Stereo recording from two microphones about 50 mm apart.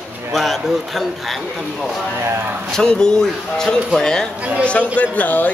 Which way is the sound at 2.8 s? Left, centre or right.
Centre.